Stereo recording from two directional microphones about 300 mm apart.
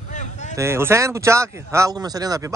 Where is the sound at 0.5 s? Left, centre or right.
Centre.